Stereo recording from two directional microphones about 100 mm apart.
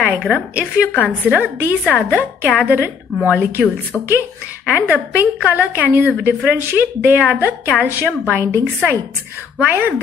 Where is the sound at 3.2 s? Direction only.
15° right (ahead or behind).